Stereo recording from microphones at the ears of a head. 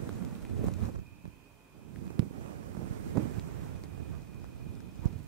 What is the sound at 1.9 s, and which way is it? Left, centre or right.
Wind noise, right.